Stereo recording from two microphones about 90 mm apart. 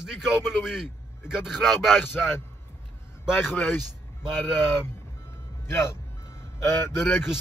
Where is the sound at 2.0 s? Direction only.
25° left (ahead or behind).